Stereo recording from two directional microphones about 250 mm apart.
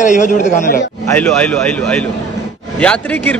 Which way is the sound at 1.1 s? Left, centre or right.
Centre.